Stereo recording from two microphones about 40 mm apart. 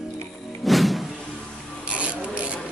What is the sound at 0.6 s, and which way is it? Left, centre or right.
Music, centre.